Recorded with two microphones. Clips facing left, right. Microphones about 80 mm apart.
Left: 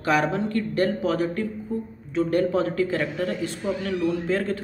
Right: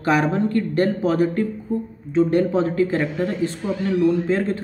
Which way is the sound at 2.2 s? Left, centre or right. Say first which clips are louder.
Right 4 dB; right.